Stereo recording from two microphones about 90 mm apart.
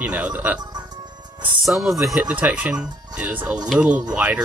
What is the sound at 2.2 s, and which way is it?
Speech, 15° right (ahead or behind).